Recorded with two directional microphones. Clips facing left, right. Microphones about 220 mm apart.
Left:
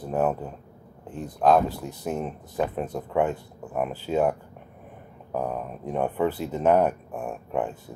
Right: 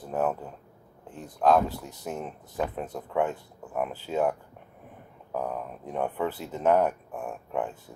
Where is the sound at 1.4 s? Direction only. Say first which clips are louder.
Left 2 dB; 15° left (ahead or behind).